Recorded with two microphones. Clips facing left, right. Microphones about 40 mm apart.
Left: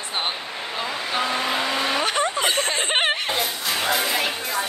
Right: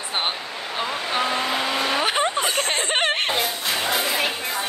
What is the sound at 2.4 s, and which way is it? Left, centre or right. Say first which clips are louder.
Speech: left 1 dB; left.